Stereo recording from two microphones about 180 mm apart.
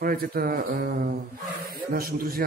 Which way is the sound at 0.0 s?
55° right (ahead or behind).